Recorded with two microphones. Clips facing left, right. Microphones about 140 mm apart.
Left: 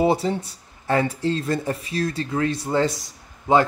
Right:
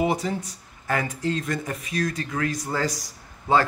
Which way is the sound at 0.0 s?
30° left (ahead or behind).